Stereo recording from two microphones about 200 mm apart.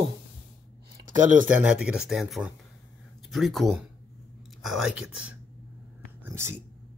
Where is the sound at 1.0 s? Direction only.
40° right (ahead or behind).